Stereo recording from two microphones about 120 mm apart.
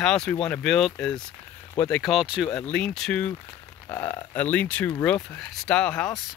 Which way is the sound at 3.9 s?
25° left (ahead or behind).